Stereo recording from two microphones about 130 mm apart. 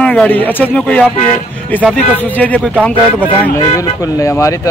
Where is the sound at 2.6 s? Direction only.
Centre (ahead or behind).